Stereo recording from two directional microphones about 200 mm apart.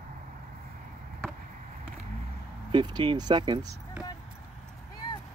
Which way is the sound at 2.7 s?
20° right (ahead or behind).